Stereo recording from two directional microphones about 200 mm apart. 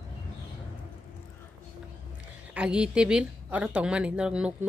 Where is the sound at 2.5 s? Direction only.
5° right (ahead or behind).